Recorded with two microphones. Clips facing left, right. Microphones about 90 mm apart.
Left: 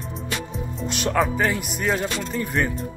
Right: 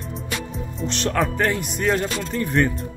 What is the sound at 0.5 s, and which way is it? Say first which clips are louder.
Speech: right 1 dB; 10° left (ahead or behind).